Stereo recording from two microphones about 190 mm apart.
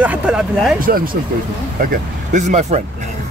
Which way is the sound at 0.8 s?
50° right (ahead or behind).